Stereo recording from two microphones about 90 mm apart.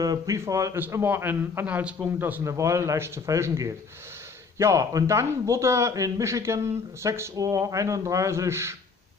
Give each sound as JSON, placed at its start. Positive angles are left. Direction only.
{"t": 0.0, "sound": "a man's voice", "side_deg": -40}
{"t": 0.7, "sound": "a man's voice", "side_deg": -20}
{"t": 2.4, "sound": "a man's voice", "side_deg": -35}